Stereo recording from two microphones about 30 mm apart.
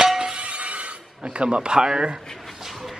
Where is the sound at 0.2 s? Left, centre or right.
Right.